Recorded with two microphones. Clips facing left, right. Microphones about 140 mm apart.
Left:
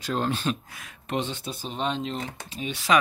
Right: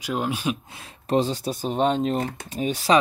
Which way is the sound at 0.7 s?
30° right (ahead or behind).